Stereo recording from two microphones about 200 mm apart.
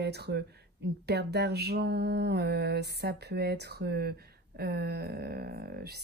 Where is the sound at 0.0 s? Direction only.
55° right (ahead or behind).